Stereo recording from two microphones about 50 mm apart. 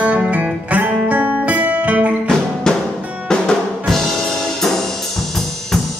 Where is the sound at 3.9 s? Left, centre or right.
Centre.